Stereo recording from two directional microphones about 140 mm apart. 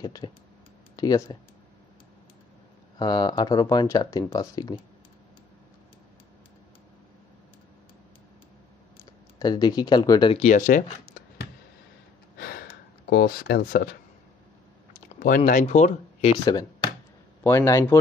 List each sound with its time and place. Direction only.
0.0 s speech: 30° left (ahead or behind)
3.0 s speech: 30° left (ahead or behind)
9.4 s speech: 30° left (ahead or behind)
10.3 s speech: 65° left (ahead or behind)
13.1 s speech: 90° left
15.0 s a sound: 75° left (ahead or behind)
15.6 s speech: 55° left (ahead or behind)
16.4 s speech: 30° left (ahead or behind)
17.4 s speech: 20° left (ahead or behind)